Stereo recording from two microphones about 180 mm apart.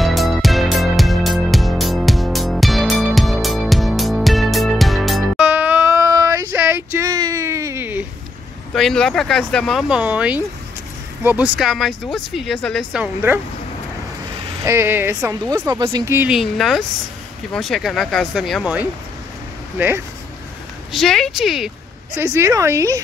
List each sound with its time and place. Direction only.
0.0 s music: centre (ahead or behind)
5.5 s a sound: 10° right (ahead or behind)
8.7 s speech: 5° left (ahead or behind)
13.0 s speech: 10° right (ahead or behind)
14.6 s speech: 15° right (ahead or behind)
16.3 s speech: centre (ahead or behind)
20.9 s speech: centre (ahead or behind)
22.2 s speech: 15° right (ahead or behind)